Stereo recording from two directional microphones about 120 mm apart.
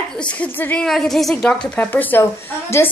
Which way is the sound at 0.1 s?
10° left (ahead or behind).